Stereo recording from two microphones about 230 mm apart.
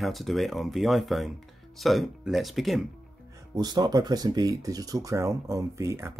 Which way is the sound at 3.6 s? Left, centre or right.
Centre.